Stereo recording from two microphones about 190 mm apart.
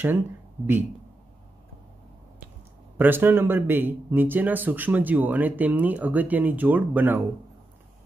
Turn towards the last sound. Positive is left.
turn(degrees=-10)  # may be behind; listen again after turning